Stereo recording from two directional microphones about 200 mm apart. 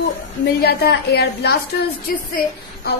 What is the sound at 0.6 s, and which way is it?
A woman's voice, 50° left (ahead or behind).